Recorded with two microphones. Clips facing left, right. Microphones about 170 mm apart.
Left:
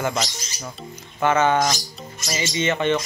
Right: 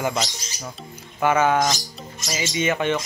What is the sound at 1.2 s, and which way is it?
Speech, 10° right (ahead or behind).